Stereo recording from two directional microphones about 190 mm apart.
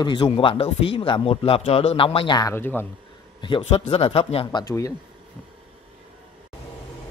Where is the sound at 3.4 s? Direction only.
25° left (ahead or behind).